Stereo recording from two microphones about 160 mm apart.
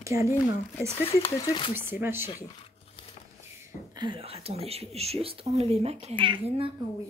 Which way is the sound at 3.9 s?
30° right (ahead or behind).